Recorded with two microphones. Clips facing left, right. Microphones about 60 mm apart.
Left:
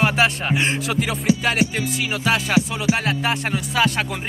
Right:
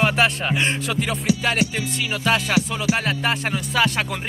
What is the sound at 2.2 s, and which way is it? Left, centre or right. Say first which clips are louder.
Music: left 1 dB; centre.